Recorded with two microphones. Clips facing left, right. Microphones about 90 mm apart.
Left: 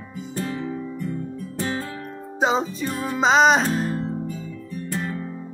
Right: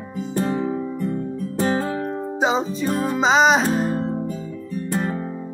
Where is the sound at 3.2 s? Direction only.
Centre (ahead or behind).